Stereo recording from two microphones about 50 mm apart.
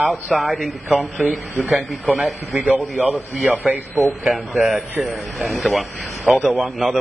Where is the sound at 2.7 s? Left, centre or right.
Right.